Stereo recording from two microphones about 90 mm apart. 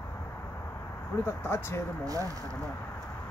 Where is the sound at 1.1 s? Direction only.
25° left (ahead or behind).